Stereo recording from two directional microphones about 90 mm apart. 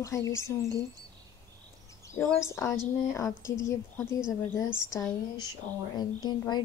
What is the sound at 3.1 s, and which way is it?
Speech, 35° left (ahead or behind).